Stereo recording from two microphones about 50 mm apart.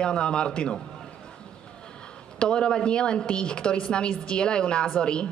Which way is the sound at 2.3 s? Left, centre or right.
Centre.